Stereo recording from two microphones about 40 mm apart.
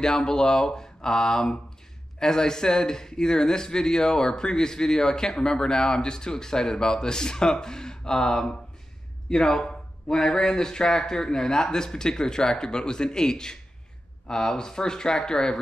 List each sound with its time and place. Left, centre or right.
0.0 s a man's voice: centre